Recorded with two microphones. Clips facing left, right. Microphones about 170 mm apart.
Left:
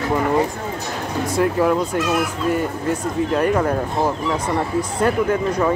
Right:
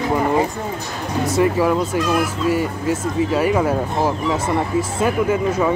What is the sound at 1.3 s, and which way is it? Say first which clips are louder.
Speech: right 1 dB; centre (ahead or behind).